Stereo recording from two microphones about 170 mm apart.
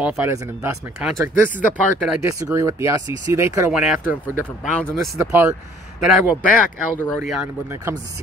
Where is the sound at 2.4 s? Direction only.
15° right (ahead or behind).